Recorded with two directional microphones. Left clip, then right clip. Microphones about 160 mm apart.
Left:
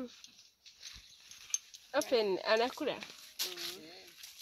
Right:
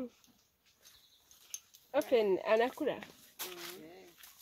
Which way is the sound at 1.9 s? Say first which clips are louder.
Right 2 dB; 5° left (ahead or behind).